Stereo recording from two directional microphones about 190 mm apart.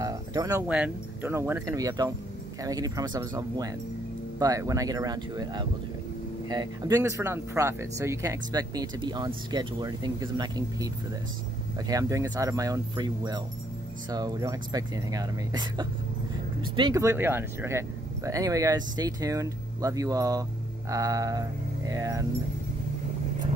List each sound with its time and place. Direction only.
0.0 s speech: 20° right (ahead or behind)
11.9 s speech: 15° right (ahead or behind)